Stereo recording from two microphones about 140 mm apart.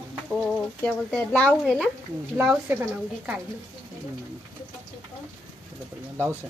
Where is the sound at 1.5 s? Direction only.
5° right (ahead or behind).